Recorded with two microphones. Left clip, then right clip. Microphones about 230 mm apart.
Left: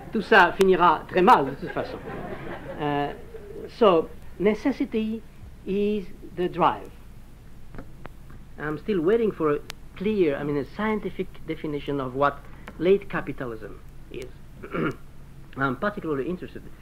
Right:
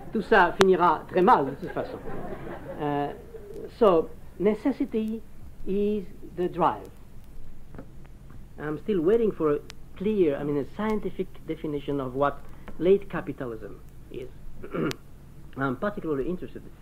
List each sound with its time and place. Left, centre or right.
0.0 s speech: left
8.5 s speech: left
14.6 s a sound: left
15.5 s speech: left